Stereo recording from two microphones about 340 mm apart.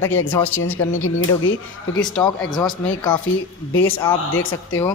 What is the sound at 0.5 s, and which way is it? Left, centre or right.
Speech, left.